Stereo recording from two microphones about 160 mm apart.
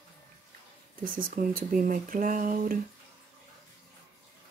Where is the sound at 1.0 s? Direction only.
60° right (ahead or behind).